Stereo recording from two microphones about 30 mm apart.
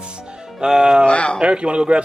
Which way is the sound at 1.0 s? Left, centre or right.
Left.